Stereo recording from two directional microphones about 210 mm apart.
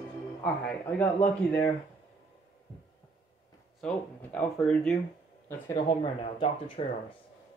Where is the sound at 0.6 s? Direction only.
5° left (ahead or behind).